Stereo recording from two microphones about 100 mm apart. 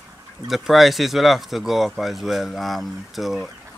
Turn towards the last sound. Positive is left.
turn(degrees=0)  # may be behind; listen again after turning